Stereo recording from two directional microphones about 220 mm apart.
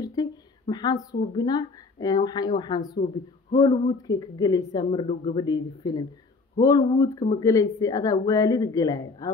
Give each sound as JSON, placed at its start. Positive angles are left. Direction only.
{"t": 0.0, "sound": "speech", "side_deg": 20}